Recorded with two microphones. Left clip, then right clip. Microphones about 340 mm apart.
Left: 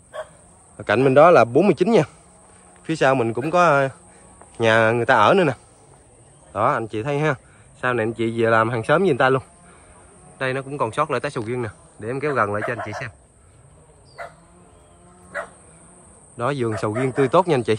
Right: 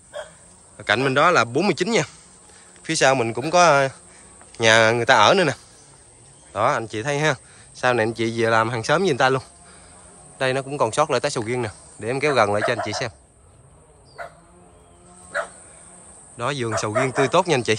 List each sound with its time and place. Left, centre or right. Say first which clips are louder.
0.7 s speech: left 4 dB; centre
15.3 s bow-wow: right 4 dB; right
16.3 s speech: left 1 dB; centre